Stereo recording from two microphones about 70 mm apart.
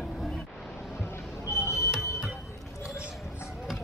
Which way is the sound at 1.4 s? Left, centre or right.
Left.